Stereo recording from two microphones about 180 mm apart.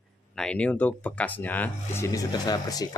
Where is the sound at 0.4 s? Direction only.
5° left (ahead or behind).